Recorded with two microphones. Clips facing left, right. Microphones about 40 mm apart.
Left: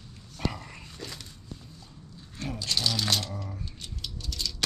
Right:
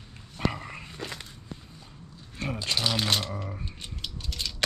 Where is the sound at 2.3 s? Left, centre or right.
Right.